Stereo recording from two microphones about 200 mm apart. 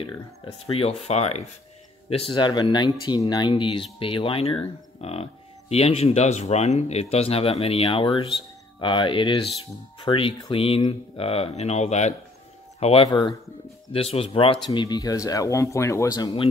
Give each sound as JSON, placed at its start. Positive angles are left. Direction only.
{"t": 0.7, "sound": "speech", "side_deg": 30}